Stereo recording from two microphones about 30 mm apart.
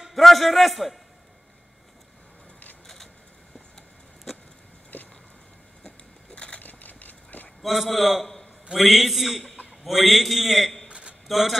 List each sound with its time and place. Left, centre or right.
0.1 s a man's voice: centre
4.9 s a sound: left
6.3 s crushing: left
6.6 s vehicle: left
7.6 s a man's voice: centre
10.9 s a sound: right
11.2 s a man's voice: centre